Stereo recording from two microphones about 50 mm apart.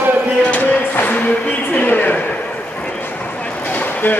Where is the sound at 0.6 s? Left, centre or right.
Left.